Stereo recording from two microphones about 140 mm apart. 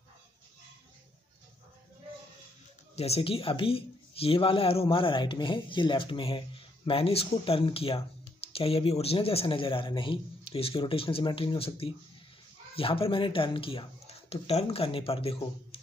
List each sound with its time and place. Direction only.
3.0 s speech: 45° left (ahead or behind)